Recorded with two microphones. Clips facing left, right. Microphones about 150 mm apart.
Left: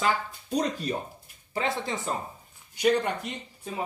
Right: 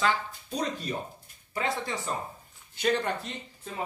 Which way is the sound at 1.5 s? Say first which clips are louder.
Left 2 dB; 25° left (ahead or behind).